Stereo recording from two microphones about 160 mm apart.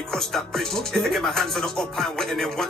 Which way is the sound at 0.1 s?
Centre (ahead or behind).